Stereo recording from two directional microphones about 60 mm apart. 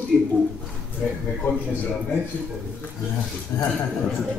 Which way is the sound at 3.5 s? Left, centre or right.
Left.